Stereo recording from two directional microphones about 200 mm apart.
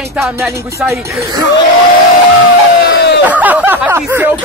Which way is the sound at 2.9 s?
55° left (ahead or behind).